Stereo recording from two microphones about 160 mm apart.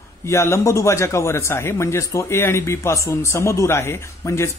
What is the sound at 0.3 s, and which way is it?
Speech, 20° left (ahead or behind).